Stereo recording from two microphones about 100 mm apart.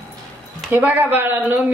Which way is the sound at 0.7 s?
20° right (ahead or behind).